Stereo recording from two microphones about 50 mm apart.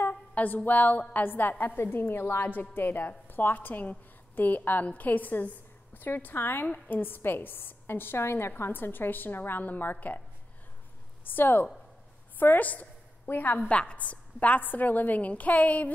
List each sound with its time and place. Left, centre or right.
0.0 s a woman's voice: left
11.2 s a woman's voice: left
12.4 s a sound: left
13.3 s a woman's voice: left
13.7 s a woman's voice: left